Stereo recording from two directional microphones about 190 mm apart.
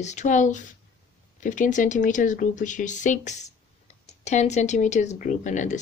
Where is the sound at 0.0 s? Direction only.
40° left (ahead or behind).